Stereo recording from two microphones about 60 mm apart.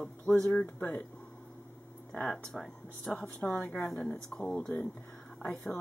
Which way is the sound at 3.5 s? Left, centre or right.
Left.